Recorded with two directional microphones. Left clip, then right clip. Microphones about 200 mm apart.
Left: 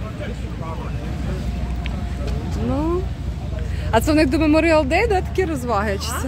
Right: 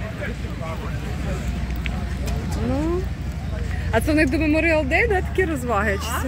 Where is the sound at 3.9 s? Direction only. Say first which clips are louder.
Left 3 dB; 20° left (ahead or behind).